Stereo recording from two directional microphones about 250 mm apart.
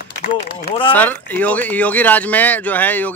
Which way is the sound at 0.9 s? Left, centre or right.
Centre.